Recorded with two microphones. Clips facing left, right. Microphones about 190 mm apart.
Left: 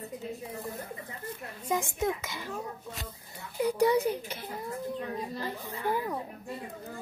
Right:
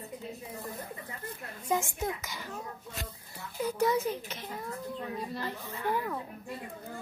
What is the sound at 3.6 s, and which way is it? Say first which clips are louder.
Speech: left 4 dB; 15° left (ahead or behind).